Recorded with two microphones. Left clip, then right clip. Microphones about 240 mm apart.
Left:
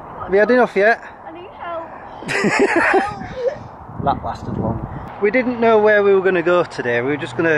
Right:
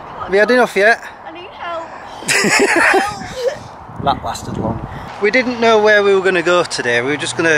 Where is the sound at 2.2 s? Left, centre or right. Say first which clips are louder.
Right 4 dB; centre.